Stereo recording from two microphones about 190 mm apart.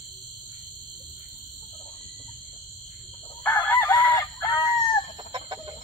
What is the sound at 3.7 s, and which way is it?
Chicken, 10° left (ahead or behind).